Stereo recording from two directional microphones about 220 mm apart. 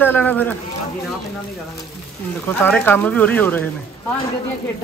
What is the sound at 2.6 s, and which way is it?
Speech, 5° left (ahead or behind).